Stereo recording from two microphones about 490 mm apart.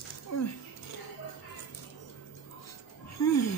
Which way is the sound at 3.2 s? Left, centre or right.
Left.